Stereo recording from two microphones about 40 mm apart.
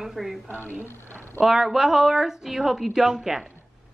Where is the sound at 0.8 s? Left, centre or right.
Left.